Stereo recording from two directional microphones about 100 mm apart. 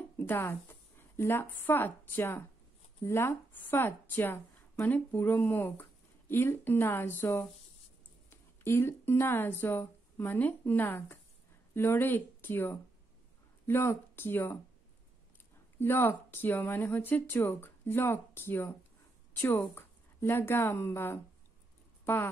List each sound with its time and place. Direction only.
0.2 s speech: 25° left (ahead or behind)
15.8 s a woman's voice: 20° left (ahead or behind)